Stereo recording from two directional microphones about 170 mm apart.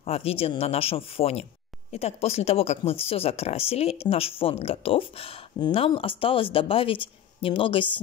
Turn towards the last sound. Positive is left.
turn(degrees=30)  # may be behind; listen again after turning